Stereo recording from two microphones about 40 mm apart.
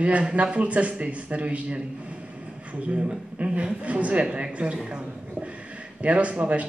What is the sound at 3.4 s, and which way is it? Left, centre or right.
A man's voice, right.